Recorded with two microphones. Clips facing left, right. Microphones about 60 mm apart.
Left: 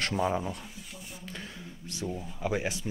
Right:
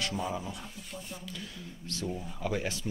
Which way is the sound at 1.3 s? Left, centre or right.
Left.